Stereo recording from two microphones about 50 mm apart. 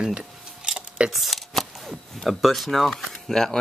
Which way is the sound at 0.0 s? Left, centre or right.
Centre.